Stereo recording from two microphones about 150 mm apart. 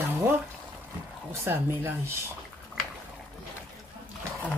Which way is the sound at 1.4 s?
15° right (ahead or behind).